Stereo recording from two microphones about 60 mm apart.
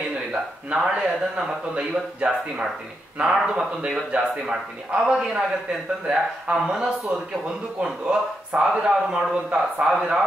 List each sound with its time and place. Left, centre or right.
0.3 s speech: centre